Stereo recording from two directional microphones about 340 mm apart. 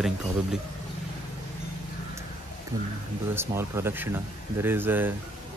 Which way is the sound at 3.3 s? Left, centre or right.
Centre.